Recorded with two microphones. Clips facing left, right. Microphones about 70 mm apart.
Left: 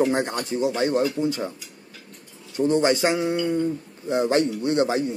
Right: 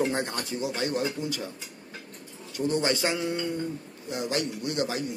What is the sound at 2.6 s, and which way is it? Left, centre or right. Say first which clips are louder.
Speech: left 7 dB; left.